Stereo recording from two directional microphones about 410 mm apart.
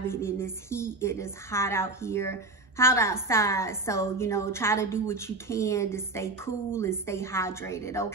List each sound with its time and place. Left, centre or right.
0.0 s a woman's voice: centre